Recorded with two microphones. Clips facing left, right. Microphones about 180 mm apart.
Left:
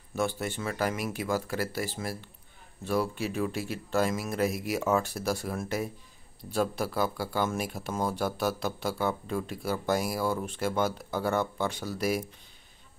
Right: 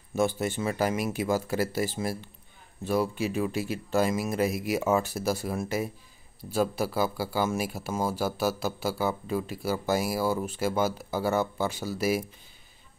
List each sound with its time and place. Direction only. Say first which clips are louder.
0.1 s speech: right 4 dB; 20° right (ahead or behind)
3.2 s speech: right 2 dB; 5° right (ahead or behind)